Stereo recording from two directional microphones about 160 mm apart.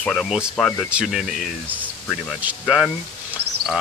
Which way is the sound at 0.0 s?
Centre (ahead or behind).